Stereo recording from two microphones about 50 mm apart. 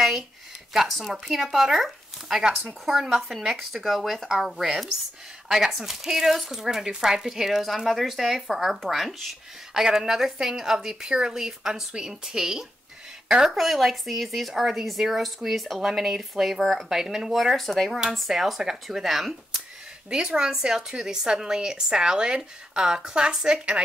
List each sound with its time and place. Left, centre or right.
0.7 s speech: centre
20.1 s speech: centre